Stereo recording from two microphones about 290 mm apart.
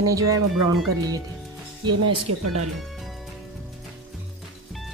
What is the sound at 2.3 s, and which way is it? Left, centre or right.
Speech, right.